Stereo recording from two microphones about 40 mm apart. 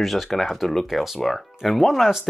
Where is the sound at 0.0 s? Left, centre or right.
Centre.